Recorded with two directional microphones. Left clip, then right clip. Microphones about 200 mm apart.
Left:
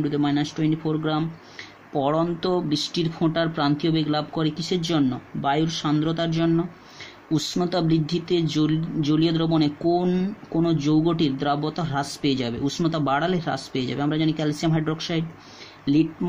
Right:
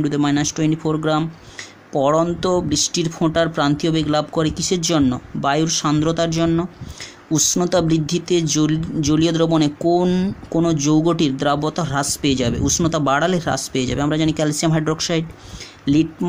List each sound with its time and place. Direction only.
0.0 s speech: 30° right (ahead or behind)